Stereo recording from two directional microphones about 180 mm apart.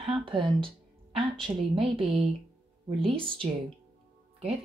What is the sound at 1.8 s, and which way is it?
Speech, 30° right (ahead or behind).